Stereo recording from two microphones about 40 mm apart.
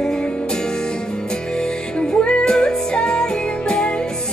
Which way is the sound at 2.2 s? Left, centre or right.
Left.